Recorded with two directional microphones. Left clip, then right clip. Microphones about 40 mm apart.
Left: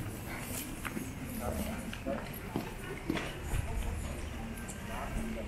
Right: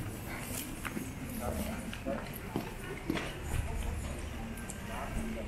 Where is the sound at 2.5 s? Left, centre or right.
Left.